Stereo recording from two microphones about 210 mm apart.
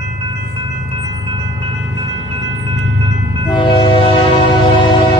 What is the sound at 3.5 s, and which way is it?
Train, 25° left (ahead or behind).